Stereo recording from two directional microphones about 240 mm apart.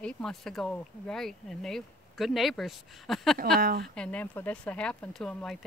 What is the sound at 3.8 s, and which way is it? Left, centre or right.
Speech, centre.